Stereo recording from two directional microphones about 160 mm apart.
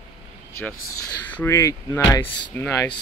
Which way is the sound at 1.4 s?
20° left (ahead or behind).